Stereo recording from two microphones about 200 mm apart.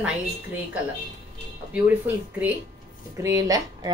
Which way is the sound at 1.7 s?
10° right (ahead or behind).